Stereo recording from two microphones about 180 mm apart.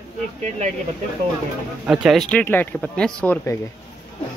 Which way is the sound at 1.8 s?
5° right (ahead or behind).